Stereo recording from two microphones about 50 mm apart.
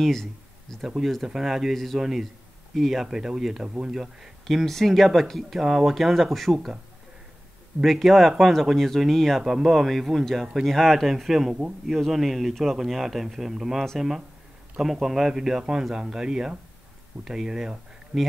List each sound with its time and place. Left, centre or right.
0.0 s a sound: centre
0.8 s speech: centre
3.6 s speech: centre
3.9 s speech: centre
7.8 s speech: centre
9.4 s speech: centre